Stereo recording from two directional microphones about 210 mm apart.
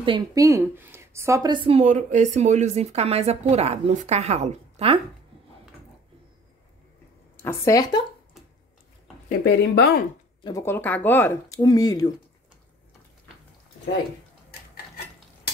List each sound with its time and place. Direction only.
0.0 s a woman's voice: 20° right (ahead or behind)
7.4 s speech: 15° left (ahead or behind)
9.6 s speech: 50° left (ahead or behind)
10.4 s speech: 15° left (ahead or behind)